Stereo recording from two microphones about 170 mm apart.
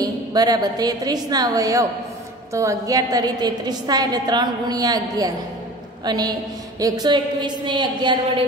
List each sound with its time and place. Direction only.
0.0 s a woman's voice: 25° right (ahead or behind)